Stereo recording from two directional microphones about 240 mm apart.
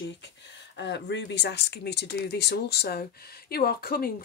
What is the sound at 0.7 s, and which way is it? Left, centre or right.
Speech, left.